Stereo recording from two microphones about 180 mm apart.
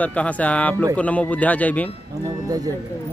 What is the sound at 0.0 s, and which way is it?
Speech, 10° left (ahead or behind).